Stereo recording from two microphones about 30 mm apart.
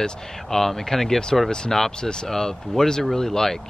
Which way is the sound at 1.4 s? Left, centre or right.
Left.